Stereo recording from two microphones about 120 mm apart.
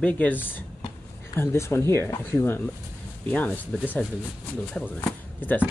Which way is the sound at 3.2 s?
10° left (ahead or behind).